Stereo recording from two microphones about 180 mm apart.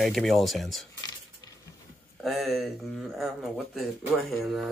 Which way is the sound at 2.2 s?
Centre (ahead or behind).